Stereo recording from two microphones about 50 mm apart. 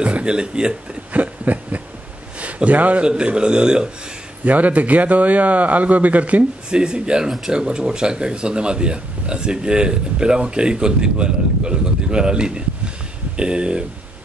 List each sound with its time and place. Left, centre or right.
0.0 s speech: right
1.1 s snicker: right
2.3 s speech: right
3.1 s speech: centre
4.5 s speech: right
6.7 s speech: centre